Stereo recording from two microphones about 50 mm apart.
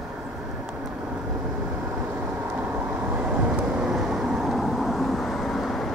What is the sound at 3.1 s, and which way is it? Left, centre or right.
Vehicle, right.